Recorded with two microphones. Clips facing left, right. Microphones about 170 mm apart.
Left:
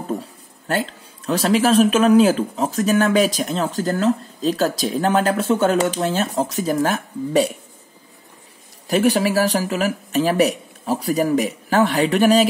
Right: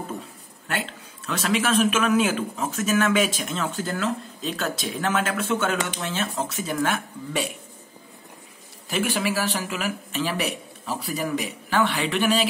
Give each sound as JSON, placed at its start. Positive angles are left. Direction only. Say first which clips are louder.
{"t": 0.7, "sound": "speech", "louder": "left 7 dB", "side_deg": 35}
{"t": 8.8, "sound": "speech", "louder": "left 8 dB", "side_deg": 40}